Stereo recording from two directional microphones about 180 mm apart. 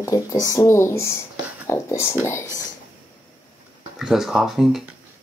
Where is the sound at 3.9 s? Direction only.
Centre (ahead or behind).